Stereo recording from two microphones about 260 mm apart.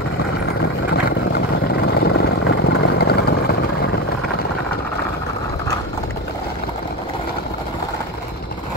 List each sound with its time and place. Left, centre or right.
0.6 s vehicle: left